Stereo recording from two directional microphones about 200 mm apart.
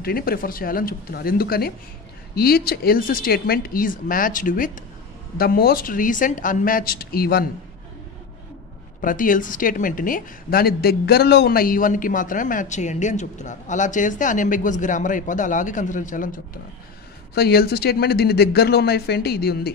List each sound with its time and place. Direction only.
0.0 s speech: 45° left (ahead or behind)
9.0 s a woman's voice: 40° left (ahead or behind)
17.3 s speech: 50° left (ahead or behind)